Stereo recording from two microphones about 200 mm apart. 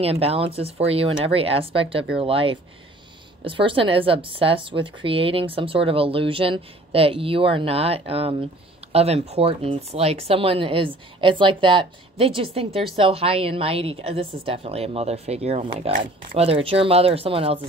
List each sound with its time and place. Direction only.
0.0 s speech: 30° right (ahead or behind)